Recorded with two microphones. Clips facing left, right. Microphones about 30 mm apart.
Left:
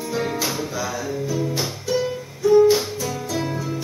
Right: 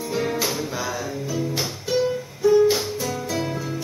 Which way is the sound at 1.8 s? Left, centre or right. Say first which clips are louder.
Right 2 dB; centre.